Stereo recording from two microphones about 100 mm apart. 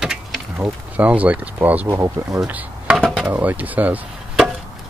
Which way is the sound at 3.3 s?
15° right (ahead or behind).